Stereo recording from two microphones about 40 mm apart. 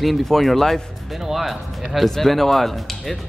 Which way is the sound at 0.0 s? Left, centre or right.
Centre.